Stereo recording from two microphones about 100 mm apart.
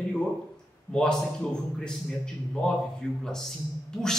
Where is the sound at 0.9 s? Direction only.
5° left (ahead or behind).